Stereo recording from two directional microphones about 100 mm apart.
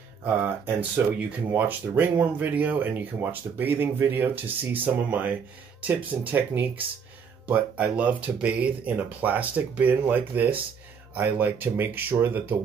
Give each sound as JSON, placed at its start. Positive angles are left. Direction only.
{"t": 0.2, "sound": "speech", "side_deg": -20}